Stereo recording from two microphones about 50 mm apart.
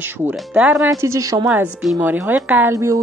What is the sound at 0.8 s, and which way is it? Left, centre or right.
Speech, right.